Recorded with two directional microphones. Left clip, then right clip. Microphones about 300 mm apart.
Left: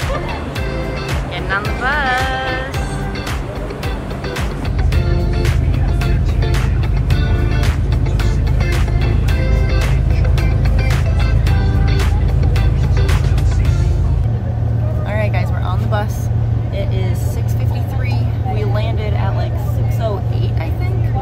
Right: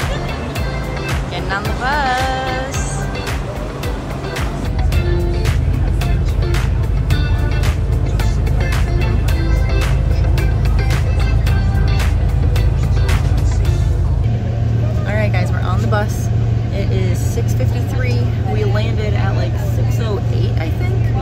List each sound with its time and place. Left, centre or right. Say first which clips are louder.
1.5 s speech: left 1 dB; centre